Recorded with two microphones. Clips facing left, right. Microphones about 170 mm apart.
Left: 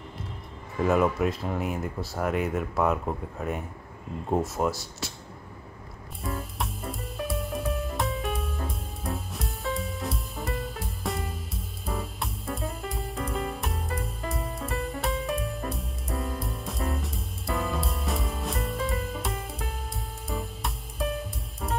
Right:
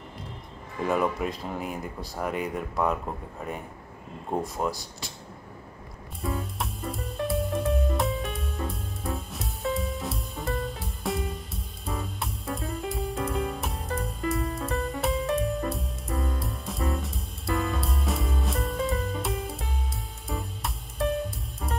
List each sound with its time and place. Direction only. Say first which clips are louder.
0.8 s speech: left 3 dB; 5° left (ahead or behind)
4.6 s speech: left 2 dB; 15° right (ahead or behind)
6.2 s music: right 2 dB; centre (ahead or behind)